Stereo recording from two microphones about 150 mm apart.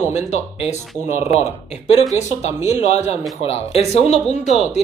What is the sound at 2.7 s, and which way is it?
A man's voice, 45° left (ahead or behind).